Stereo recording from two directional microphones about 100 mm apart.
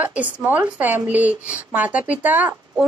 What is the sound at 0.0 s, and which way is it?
Speech, 15° right (ahead or behind).